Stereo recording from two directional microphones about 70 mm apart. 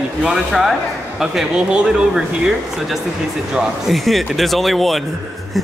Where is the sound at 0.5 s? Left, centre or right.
Centre.